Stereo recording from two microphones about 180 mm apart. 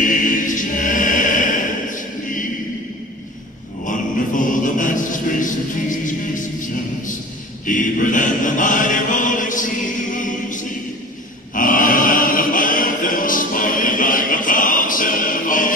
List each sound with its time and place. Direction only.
0.0 s music: 45° left (ahead or behind)
3.8 s music: 45° left (ahead or behind)
7.6 s chant: 45° left (ahead or behind)